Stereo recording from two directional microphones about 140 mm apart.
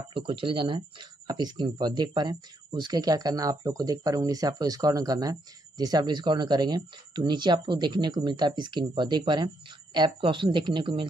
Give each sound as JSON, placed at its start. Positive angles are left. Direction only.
{"t": 0.1, "sound": "speech", "side_deg": -40}